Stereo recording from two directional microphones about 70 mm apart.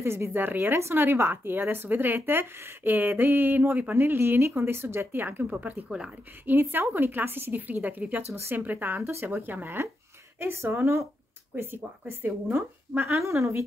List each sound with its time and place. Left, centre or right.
0.0 s a woman's voice: right
13.2 s speech: right